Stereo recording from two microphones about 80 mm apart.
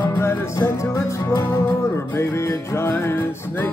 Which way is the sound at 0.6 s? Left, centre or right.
Left.